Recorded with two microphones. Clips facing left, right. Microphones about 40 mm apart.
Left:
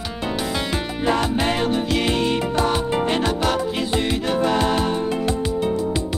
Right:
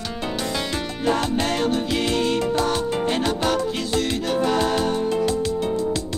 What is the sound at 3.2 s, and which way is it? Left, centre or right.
Music, centre.